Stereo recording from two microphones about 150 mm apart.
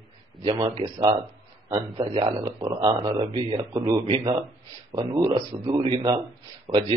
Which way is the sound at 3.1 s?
30° right (ahead or behind).